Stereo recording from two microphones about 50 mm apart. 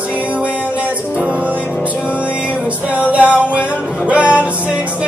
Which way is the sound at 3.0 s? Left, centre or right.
Right.